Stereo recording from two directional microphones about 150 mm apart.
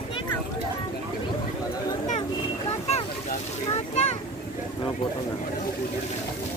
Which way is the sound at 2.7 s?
45° left (ahead or behind).